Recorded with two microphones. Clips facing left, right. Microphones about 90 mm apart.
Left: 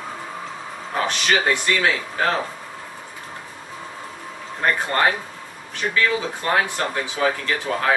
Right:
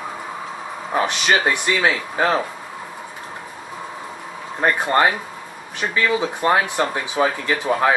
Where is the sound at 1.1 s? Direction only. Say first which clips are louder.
Left 1 dB; 20° right (ahead or behind).